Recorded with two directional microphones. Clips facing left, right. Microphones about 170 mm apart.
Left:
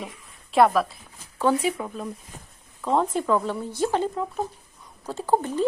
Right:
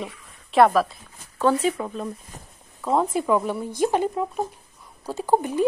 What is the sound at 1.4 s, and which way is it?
Speech, 10° left (ahead or behind).